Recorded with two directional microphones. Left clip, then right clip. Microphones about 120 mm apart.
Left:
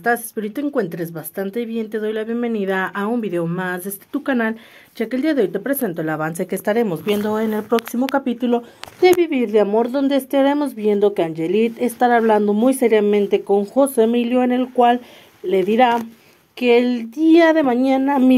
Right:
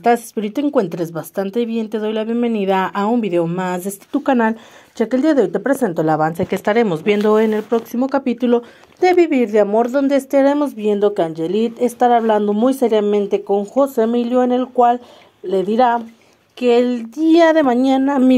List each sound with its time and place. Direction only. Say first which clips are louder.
0.0 s speech: right 4 dB; 15° right (ahead or behind)
4.1 s speech: right 5 dB; 5° right (ahead or behind)
5.9 s speech: right 7 dB; 15° right (ahead or behind)
6.3 s speech: right 4 dB; 15° left (ahead or behind)
6.7 s speech: right 3 dB; 5° left (ahead or behind)
7.2 s speech: right 7 dB; 20° right (ahead or behind)
8.3 s speech: right 4 dB; 35° right (ahead or behind)
9.2 s speech: right 3 dB; 10° right (ahead or behind)
17.1 s speech: right 1 dB; 15° right (ahead or behind)